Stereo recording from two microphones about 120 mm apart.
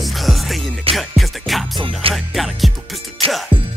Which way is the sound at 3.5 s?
45° right (ahead or behind).